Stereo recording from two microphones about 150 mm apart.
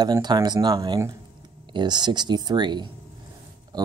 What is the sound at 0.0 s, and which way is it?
Speech, 25° right (ahead or behind).